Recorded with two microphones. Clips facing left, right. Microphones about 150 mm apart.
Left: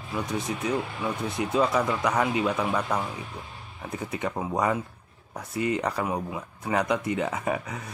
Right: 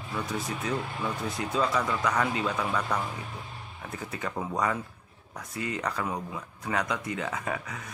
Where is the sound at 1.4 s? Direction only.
20° left (ahead or behind).